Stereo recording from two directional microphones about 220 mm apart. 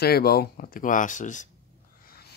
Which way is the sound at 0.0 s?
45° left (ahead or behind).